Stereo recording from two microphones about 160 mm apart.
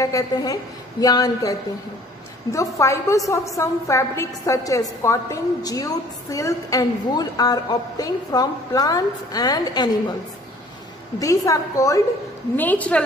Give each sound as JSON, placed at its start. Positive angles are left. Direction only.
{"t": 0.0, "sound": "a woman's voice", "side_deg": 20}
{"t": 2.5, "sound": "a woman's voice", "side_deg": 20}
{"t": 11.1, "sound": "a woman's voice", "side_deg": 20}
{"t": 12.5, "sound": "a woman's voice", "side_deg": 10}